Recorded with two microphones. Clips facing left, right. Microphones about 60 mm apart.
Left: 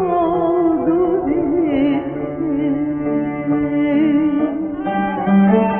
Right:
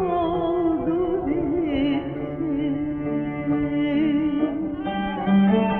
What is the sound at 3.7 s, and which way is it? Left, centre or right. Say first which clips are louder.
Music: left 7 dB; left.